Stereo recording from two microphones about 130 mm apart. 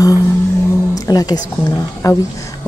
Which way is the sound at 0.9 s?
30° left (ahead or behind).